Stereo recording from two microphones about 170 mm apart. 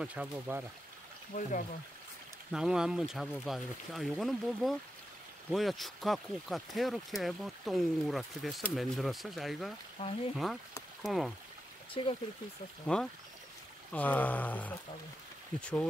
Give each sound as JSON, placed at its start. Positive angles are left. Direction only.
{"t": 0.0, "sound": "speech", "side_deg": -10}
{"t": 1.3, "sound": "speech", "side_deg": 55}
{"t": 2.5, "sound": "speech", "side_deg": -5}
{"t": 10.0, "sound": "speech", "side_deg": 30}
{"t": 10.3, "sound": "speech", "side_deg": 0}
{"t": 12.8, "sound": "speech", "side_deg": 5}